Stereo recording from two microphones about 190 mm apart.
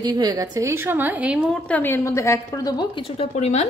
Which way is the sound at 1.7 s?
10° left (ahead or behind).